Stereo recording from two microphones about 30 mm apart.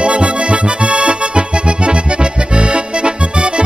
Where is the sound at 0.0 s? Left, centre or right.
Right.